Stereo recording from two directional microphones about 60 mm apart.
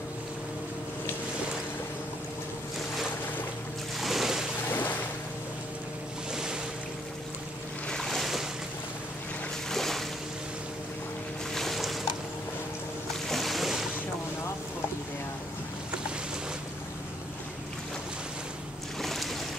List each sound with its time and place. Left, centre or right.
4.0 s boat: centre
4.6 s boat: left
6.3 s boat: centre
7.9 s boat: centre
9.7 s boat: centre
11.5 s boat: centre
13.3 s boat: centre
18.9 s boat: centre